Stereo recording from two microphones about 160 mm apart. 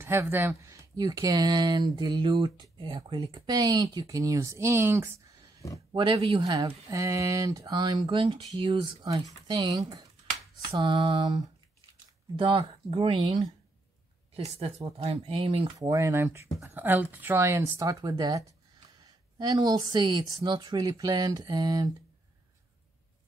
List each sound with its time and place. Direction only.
0.0 s speech: 15° right (ahead or behind)
5.9 s a woman's voice: 30° right (ahead or behind)
15.8 s speech: 20° right (ahead or behind)